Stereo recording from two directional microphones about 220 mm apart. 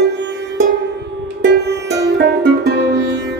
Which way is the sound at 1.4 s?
50° right (ahead or behind).